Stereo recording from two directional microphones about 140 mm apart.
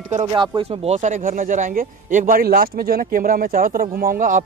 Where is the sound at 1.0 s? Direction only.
70° right (ahead or behind).